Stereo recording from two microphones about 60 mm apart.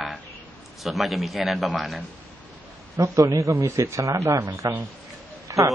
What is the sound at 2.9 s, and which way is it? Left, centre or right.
A man's voice, right.